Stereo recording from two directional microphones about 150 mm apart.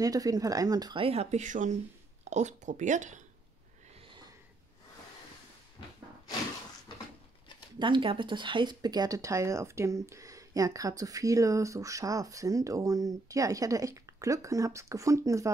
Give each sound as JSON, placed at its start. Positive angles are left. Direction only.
{"t": 0.0, "sound": "speech", "side_deg": -25}
{"t": 1.0, "sound": "speech", "side_deg": -45}
{"t": 3.9, "sound": "a sound", "side_deg": -30}
{"t": 7.8, "sound": "speech", "side_deg": -35}